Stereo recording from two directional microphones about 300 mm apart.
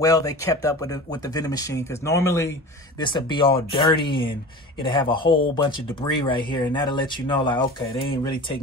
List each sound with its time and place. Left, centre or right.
0.0 s speech: centre